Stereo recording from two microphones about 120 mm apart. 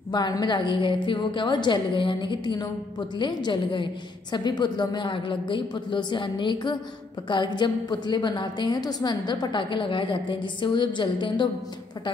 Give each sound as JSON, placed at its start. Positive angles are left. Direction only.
{"t": 0.1, "sound": "a woman's voice", "side_deg": 35}